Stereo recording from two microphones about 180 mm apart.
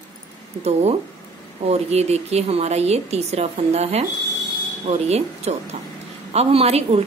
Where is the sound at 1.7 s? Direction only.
35° right (ahead or behind).